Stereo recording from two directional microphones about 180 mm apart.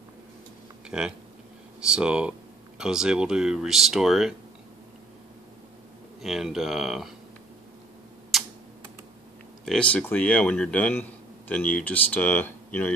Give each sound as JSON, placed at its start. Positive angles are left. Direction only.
{"t": 0.8, "sound": "speech", "side_deg": -5}
{"t": 6.2, "sound": "speech", "side_deg": 0}
{"t": 9.7, "sound": "a man's voice", "side_deg": 5}